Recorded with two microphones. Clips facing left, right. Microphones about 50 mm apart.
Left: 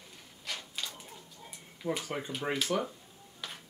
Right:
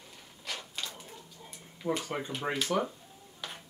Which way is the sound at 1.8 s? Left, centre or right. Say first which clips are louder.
Right 2 dB; centre.